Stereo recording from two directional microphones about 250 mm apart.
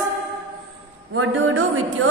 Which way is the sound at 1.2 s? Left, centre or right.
Right.